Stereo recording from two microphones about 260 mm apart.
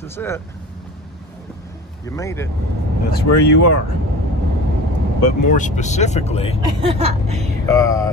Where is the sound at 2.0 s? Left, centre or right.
Centre.